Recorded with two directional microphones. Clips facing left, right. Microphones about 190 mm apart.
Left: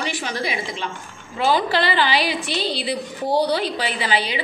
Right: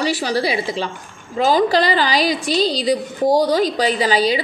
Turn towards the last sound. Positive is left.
turn(degrees=-40)  # may be behind; listen again after turning